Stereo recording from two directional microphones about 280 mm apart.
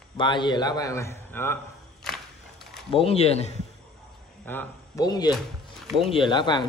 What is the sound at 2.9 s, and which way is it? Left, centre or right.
Speech, left.